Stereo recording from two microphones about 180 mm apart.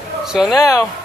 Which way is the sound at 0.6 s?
15° left (ahead or behind).